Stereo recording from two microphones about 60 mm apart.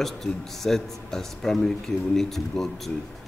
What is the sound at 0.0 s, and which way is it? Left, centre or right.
Speech, centre.